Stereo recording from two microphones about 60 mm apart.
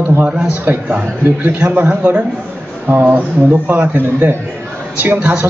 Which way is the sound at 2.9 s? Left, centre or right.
Right.